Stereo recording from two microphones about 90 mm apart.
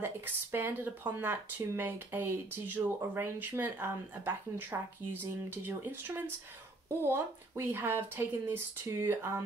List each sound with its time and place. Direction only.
0.0 s speech: 25° right (ahead or behind)